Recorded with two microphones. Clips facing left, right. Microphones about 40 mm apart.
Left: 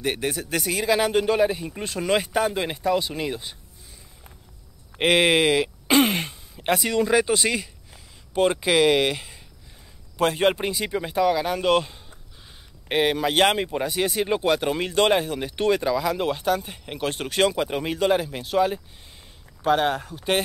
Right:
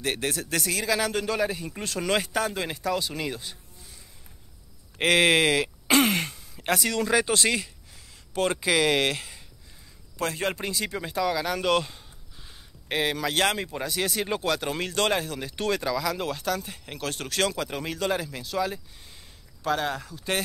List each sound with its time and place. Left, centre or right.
0.0 s speech: centre
1.7 s speech: centre
4.9 s speech: centre
10.1 s speech: left